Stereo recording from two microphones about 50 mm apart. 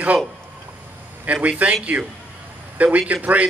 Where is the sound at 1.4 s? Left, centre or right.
Right.